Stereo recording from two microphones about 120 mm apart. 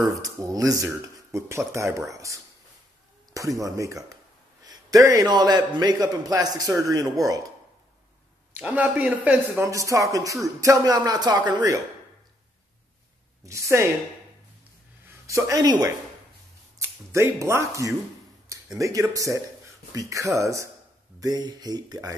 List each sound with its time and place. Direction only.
0.1 s a man's voice: 30° right (ahead or behind)
8.5 s speech: 15° right (ahead or behind)
9.7 s speech: 25° right (ahead or behind)
13.5 s speech: 25° right (ahead or behind)
15.2 s a man's voice: 25° right (ahead or behind)